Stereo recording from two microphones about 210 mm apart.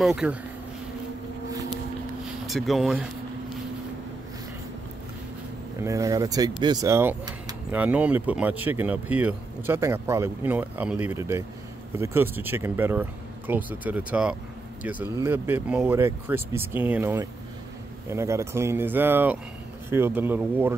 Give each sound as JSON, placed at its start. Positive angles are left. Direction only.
{"t": 0.0, "sound": "speech", "side_deg": -5}
{"t": 2.4, "sound": "speech", "side_deg": 0}
{"t": 5.8, "sound": "speech", "side_deg": -15}